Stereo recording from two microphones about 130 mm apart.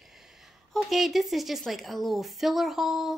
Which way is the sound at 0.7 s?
Centre (ahead or behind).